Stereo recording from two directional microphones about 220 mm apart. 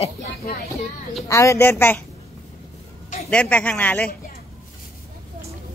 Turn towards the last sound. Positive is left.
turn(degrees=5)  # may be behind; listen again after turning